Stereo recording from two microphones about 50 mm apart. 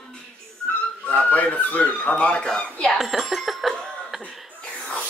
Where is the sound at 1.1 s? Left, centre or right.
Left.